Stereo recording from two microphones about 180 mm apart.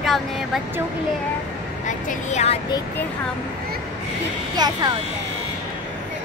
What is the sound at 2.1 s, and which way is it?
Speech, 40° left (ahead or behind).